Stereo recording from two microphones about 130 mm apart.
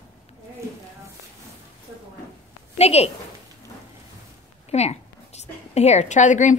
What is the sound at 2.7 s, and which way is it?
Speech, 55° left (ahead or behind).